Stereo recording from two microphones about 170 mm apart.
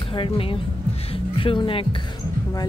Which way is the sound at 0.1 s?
30° left (ahead or behind).